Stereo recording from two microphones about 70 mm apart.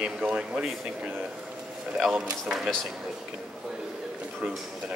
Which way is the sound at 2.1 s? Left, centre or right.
Right.